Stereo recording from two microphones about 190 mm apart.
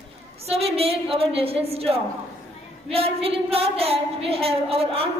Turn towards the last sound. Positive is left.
turn(degrees=-30)  # may be behind; listen again after turning